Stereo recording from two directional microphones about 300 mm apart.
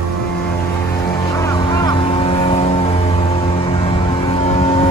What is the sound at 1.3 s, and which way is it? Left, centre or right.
Vehicle, centre.